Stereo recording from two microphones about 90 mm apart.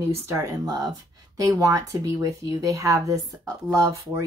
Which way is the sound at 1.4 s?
40° right (ahead or behind).